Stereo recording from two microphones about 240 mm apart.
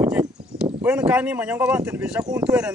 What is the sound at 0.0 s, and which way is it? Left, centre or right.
A man's voice, centre.